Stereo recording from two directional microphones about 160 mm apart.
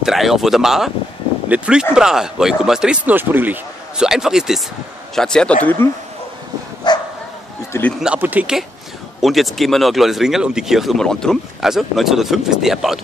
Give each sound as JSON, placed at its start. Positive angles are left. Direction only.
{"t": 0.0, "sound": "speech", "side_deg": 0}
{"t": 6.8, "sound": "bow-wow", "side_deg": 25}
{"t": 8.0, "sound": "speech", "side_deg": -10}